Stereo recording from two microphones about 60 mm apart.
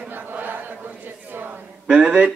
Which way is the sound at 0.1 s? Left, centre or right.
Right.